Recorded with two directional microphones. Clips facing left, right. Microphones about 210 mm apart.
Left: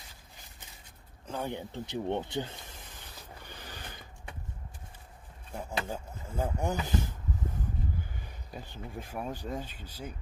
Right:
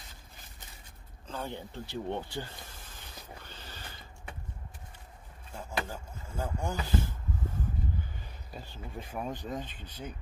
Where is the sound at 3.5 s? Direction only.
15° left (ahead or behind).